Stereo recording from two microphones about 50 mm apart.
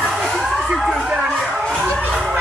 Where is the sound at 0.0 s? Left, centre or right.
Centre.